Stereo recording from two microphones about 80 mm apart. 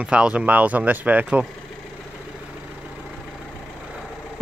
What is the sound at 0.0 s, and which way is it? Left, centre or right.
Speech, centre.